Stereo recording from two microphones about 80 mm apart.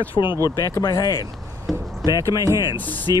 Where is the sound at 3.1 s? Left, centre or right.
Left.